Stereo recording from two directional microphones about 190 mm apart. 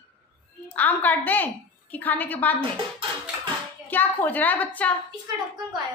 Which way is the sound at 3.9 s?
10° left (ahead or behind).